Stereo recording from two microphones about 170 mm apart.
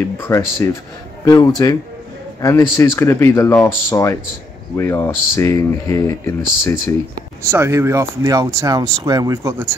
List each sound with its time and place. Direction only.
0.2 s speech: 15° left (ahead or behind)
7.5 s speech: 15° right (ahead or behind)